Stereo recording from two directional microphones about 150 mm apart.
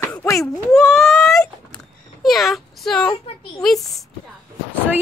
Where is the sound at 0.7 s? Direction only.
Centre (ahead or behind).